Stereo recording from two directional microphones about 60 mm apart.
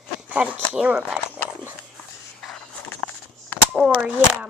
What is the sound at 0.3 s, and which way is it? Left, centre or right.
Speech, right.